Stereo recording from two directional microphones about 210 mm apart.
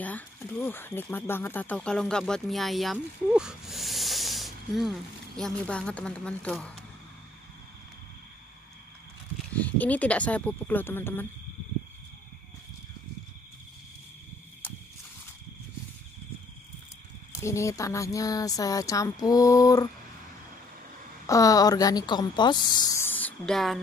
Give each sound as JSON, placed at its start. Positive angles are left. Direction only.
{"t": 0.0, "sound": "speech", "side_deg": 10}
{"t": 9.5, "sound": "speech", "side_deg": 5}
{"t": 17.4, "sound": "speech", "side_deg": 15}
{"t": 21.3, "sound": "speech", "side_deg": 15}
{"t": 23.0, "sound": "a sound", "side_deg": 5}